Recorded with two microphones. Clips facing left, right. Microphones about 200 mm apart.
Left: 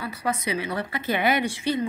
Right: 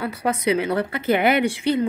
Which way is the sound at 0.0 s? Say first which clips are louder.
Right 6 dB; 60° right (ahead or behind).